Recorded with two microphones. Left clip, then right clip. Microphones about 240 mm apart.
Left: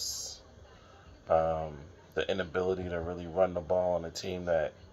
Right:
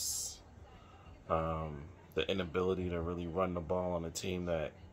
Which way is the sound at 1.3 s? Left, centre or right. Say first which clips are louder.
Left 8 dB; centre.